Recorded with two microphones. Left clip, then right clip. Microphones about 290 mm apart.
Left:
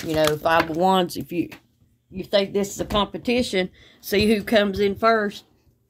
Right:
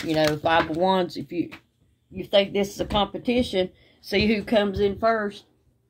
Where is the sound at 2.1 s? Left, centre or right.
Left.